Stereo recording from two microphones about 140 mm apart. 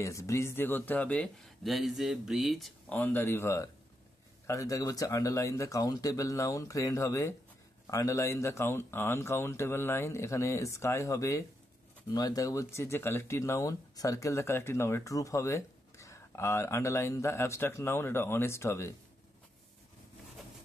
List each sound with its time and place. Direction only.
0.0 s speech: 20° left (ahead or behind); by 2.7 s centre (ahead or behind)
2.9 s speech: 15° left (ahead or behind)